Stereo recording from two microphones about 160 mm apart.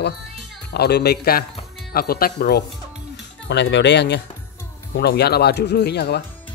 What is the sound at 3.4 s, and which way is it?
Speech, 90° left.